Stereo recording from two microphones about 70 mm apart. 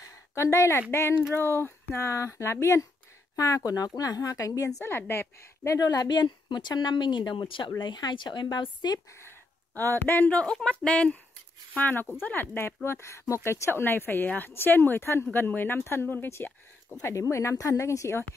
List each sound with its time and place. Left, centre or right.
0.3 s speech: left
3.3 s speech: left
4.8 s speech: left
5.8 s a woman's voice: left
10.0 s speech: left
10.3 s speech: centre; by 16.5 s left
17.0 s speech: left